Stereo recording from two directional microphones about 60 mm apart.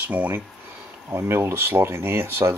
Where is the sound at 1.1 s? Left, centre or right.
Right.